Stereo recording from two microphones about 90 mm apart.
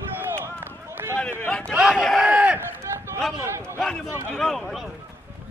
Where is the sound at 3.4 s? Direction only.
30° right (ahead or behind).